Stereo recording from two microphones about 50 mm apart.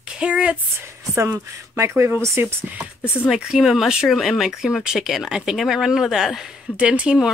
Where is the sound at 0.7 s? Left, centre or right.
Right.